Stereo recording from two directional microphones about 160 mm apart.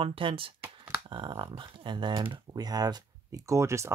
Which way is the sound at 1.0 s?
30° right (ahead or behind).